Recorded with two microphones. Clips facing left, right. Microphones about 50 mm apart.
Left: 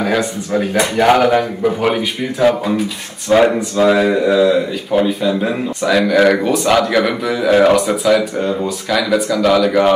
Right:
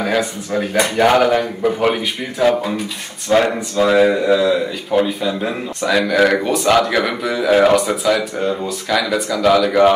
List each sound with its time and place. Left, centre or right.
0.0 s speech: centre